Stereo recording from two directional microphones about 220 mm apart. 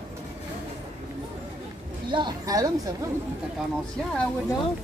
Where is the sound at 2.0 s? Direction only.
20° right (ahead or behind).